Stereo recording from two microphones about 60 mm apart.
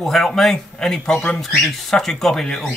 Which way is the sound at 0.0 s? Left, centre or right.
Centre.